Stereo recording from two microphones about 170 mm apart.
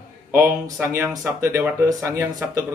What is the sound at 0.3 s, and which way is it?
Speech, 15° right (ahead or behind).